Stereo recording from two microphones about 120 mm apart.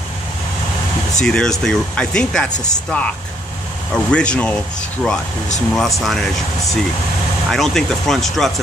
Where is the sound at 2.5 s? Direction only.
80° left.